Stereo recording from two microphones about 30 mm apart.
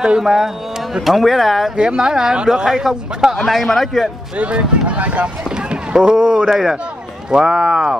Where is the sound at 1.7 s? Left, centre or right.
Right.